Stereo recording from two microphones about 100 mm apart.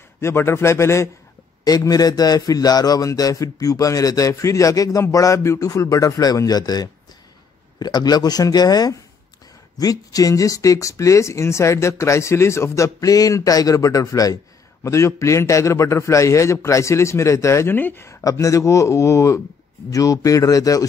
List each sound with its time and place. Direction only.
0.2 s speech: 25° left (ahead or behind)
1.6 s speech: 40° left (ahead or behind); by 18.1 s 20° left (ahead or behind)
18.3 s speech: 30° left (ahead or behind)